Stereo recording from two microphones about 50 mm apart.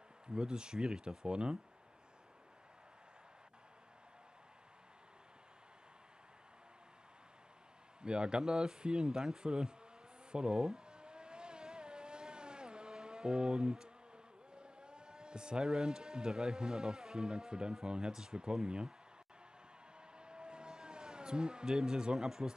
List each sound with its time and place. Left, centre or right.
0.3 s a man's voice: centre
8.0 s a man's voice: centre
10.3 s vehicle: centre
14.5 s a man's voice: centre
20.2 s vehicle: centre